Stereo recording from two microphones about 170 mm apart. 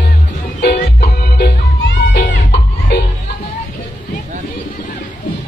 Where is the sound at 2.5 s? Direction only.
70° left (ahead or behind).